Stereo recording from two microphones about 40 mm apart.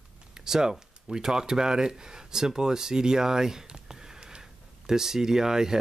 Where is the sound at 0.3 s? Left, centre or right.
Centre.